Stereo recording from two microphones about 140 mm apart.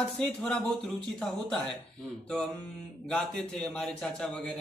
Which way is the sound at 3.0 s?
5° left (ahead or behind).